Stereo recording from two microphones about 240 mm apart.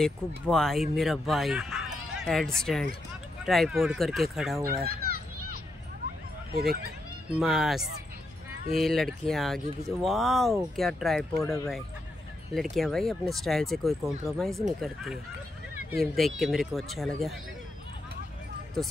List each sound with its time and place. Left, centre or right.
0.0 s speech: centre
4.6 s speech: right
6.5 s speech: right
7.3 s speech: centre
12.5 s speech: centre
16.0 s speech: centre
18.8 s speech: centre